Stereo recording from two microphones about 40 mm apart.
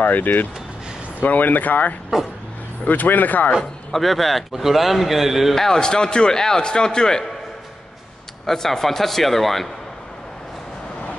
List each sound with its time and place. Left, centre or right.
0.0 s speech: left
3.9 s a man's voice: centre
5.5 s a man's voice: centre
8.5 s a man's voice: centre